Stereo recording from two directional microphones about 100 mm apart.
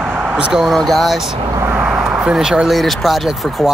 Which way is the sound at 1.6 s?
20° right (ahead or behind).